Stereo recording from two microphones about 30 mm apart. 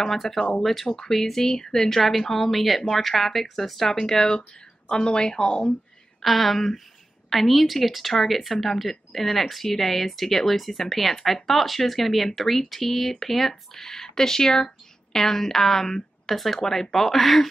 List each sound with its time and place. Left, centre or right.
0.0 s speech: centre
2.0 s speech: centre
4.0 s speech: centre
4.4 s speech: left
6.2 s speech: centre
16.5 s speech: centre